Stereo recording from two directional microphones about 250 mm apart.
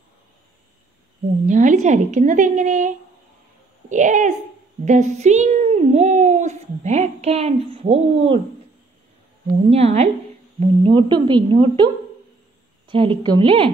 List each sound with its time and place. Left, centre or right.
1.4 s a woman's voice: right
9.7 s a child's voice: right